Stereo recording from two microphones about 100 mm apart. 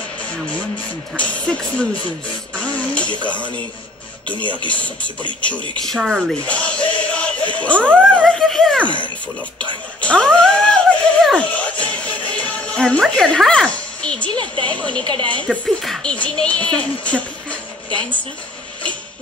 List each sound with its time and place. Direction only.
1.1 s speech: 15° left (ahead or behind)
2.5 s a sound: 10° left (ahead or behind)
5.4 s speech: 10° left (ahead or behind)
5.9 s speech: centre (ahead or behind)
6.4 s dog: 10° left (ahead or behind)
10.0 s music: 10° left (ahead or behind)
14.3 s speech: 55° right (ahead or behind)
14.7 s speech: 10° left (ahead or behind)